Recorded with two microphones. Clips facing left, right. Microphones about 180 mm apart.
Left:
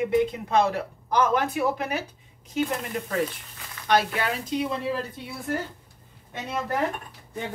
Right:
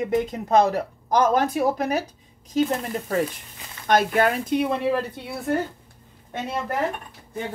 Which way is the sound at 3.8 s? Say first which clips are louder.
Right 4 dB; 50° right (ahead or behind).